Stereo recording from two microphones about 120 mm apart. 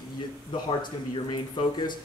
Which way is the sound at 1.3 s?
40° left (ahead or behind).